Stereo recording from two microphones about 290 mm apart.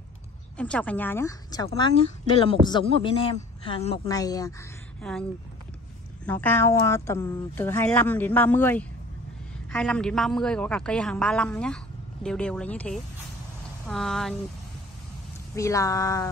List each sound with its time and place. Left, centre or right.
0.6 s a woman's voice: centre
6.2 s a woman's voice: centre
15.5 s a woman's voice: centre